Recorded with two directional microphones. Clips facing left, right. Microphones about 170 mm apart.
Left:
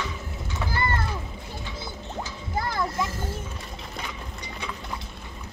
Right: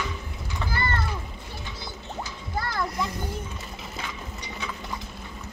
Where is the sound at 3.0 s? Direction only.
15° right (ahead or behind).